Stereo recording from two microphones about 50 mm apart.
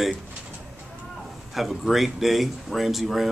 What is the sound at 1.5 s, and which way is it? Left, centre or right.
Speech, centre.